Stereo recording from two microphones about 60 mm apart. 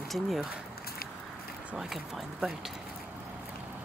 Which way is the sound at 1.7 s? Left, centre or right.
Centre.